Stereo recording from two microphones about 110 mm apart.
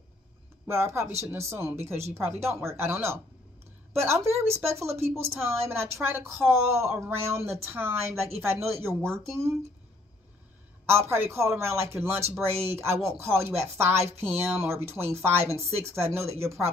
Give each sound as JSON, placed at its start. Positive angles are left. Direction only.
{"t": 0.7, "sound": "speech", "side_deg": -25}
{"t": 10.9, "sound": "speech", "side_deg": -25}